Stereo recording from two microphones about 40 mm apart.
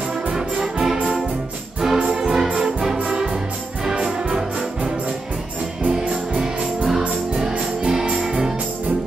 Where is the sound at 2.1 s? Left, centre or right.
Centre.